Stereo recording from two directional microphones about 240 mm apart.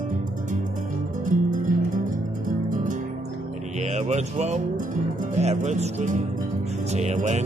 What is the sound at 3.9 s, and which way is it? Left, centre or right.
Music, right.